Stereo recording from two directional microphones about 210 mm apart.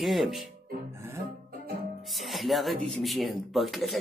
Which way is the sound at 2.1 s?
Centre (ahead or behind).